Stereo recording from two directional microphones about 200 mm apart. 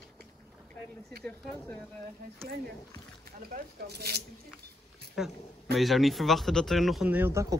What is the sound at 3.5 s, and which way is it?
Speech, 50° right (ahead or behind).